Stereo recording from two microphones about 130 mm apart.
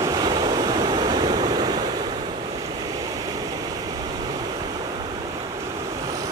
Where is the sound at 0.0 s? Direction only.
30° right (ahead or behind).